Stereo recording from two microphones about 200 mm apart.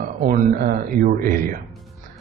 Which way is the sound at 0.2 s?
45° right (ahead or behind).